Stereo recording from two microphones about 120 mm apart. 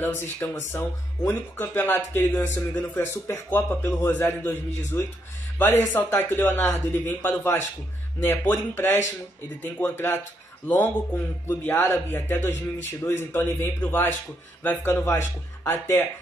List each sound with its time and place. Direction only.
0.0 s speech: 20° left (ahead or behind)
11.4 s speech: 20° left (ahead or behind)